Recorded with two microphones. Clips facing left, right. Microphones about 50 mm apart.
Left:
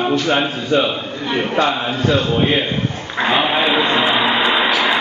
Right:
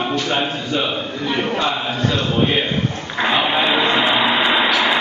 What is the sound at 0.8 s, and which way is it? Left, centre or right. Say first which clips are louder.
Speech: left 3 dB; centre.